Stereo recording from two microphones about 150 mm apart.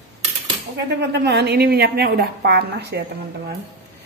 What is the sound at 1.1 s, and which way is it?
A woman's voice, 90° right.